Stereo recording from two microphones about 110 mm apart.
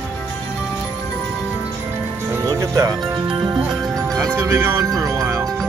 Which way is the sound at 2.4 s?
30° right (ahead or behind).